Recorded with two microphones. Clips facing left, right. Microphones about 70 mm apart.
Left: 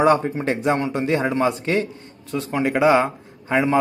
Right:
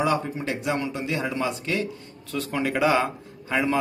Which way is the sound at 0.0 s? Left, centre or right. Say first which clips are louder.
Left 7 dB; left.